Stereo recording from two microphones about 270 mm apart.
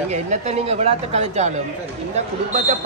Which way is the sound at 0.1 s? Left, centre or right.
Right.